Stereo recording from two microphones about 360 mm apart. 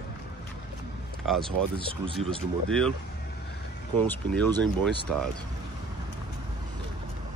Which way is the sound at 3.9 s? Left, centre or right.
Centre.